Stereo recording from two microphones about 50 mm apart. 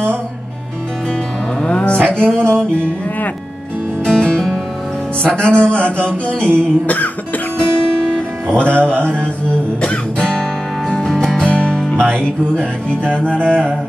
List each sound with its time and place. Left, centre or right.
1.6 s music: left
4.0 s music: centre
8.5 s music: centre
13.5 s a sound: centre